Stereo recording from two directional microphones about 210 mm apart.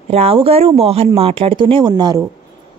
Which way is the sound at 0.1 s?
30° right (ahead or behind).